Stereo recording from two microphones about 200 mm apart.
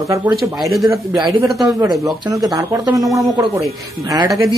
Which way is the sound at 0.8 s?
15° right (ahead or behind).